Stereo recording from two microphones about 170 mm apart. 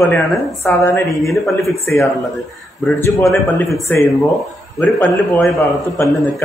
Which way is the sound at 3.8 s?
15° left (ahead or behind).